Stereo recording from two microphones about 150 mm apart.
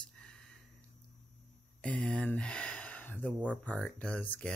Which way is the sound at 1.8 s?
5° left (ahead or behind).